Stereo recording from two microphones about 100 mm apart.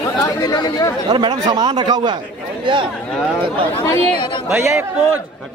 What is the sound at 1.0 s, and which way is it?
A man's voice, 45° right (ahead or behind).